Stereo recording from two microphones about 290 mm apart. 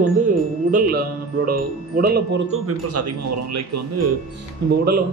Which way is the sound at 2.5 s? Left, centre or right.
Right.